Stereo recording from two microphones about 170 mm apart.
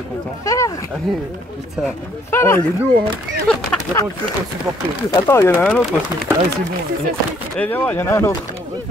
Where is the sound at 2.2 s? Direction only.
15° left (ahead or behind).